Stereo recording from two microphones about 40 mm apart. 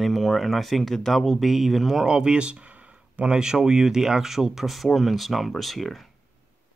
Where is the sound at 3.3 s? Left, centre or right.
Centre.